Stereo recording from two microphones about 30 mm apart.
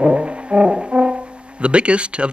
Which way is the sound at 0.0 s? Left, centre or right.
Right.